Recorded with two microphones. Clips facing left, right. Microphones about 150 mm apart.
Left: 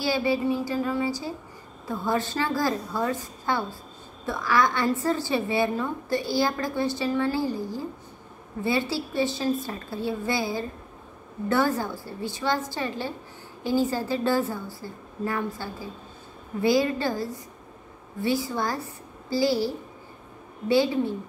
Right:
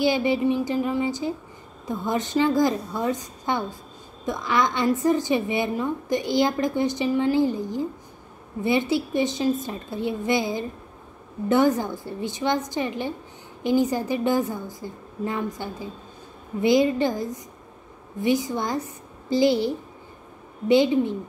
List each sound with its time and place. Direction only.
0.0 s a woman's voice: 20° right (ahead or behind)